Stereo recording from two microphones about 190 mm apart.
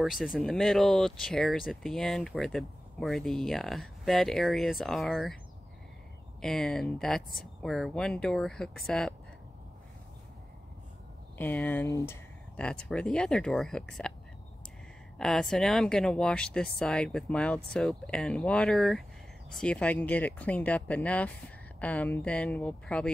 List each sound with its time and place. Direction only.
0.0 s speech: centre (ahead or behind)
6.4 s speech: centre (ahead or behind)
11.3 s speech: 10° left (ahead or behind)
12.5 s speech: 5° left (ahead or behind)
15.1 s speech: centre (ahead or behind)